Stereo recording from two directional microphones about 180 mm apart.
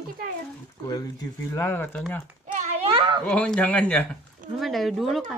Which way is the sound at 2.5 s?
45° right (ahead or behind).